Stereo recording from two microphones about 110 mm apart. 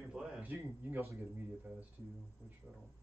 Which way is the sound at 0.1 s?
10° right (ahead or behind).